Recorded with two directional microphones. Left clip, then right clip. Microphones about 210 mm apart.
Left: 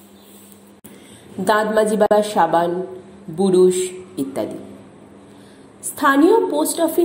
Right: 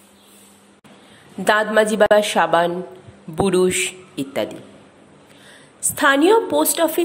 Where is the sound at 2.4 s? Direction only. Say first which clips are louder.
Even; 50° right (ahead or behind).